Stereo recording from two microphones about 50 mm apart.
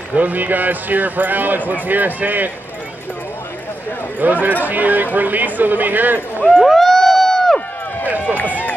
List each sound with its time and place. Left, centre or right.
0.1 s speech: right
4.2 s speech: right
6.6 s a sound: centre
8.4 s run: left